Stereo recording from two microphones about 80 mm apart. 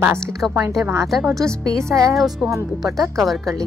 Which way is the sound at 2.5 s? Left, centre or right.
Right.